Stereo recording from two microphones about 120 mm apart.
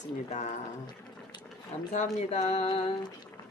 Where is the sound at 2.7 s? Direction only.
45° left (ahead or behind).